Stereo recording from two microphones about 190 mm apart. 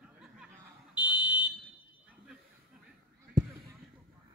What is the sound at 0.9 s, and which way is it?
Fire alarm, 10° right (ahead or behind).